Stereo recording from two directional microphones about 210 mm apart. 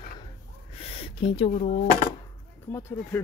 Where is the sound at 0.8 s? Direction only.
30° left (ahead or behind).